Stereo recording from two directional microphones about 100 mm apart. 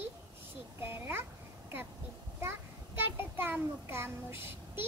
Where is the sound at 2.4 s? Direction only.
25° right (ahead or behind).